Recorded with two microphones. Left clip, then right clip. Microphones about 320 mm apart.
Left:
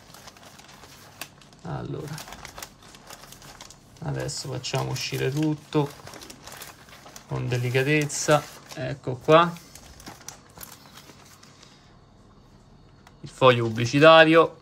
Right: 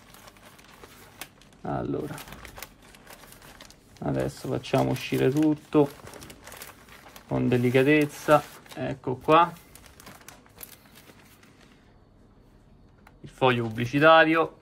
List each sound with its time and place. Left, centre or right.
1.7 s speech: centre
4.0 s speech: centre
7.3 s speech: centre
13.2 s speech: centre